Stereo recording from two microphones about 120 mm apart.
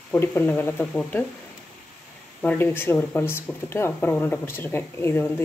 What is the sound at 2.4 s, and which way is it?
Speech, 15° left (ahead or behind).